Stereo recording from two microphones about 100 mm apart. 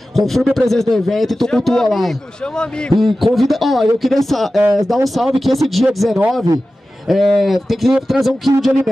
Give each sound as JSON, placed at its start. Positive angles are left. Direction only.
{"t": 0.1, "sound": "speech", "side_deg": 0}